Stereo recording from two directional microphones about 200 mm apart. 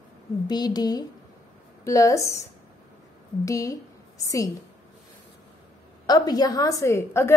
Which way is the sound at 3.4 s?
15° left (ahead or behind).